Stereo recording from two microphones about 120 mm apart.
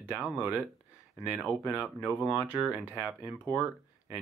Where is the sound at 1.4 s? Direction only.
Centre (ahead or behind).